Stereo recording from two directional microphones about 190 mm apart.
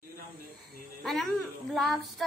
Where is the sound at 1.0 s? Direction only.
Centre (ahead or behind).